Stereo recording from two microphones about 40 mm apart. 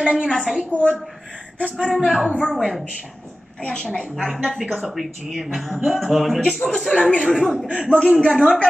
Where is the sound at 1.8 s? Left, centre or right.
Centre.